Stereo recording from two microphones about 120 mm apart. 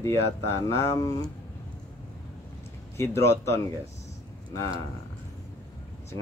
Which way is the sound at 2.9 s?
25° left (ahead or behind).